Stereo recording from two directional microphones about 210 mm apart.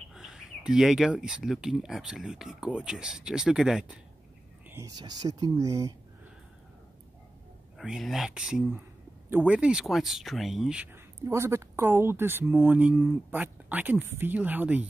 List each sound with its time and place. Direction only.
0.1 s speech: centre (ahead or behind)
4.6 s speech: 15° right (ahead or behind)
7.7 s speech: centre (ahead or behind)